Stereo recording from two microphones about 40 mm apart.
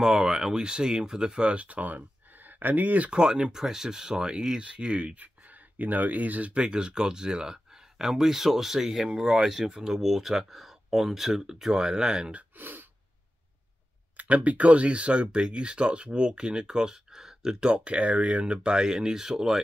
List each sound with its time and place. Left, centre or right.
0.0 s speech: centre
1.4 s speech: right
3.1 s speech: right
5.2 s speech: right
6.5 s speech: right
12.3 s gasp: right
14.1 s speech: right
18.7 s speech: centre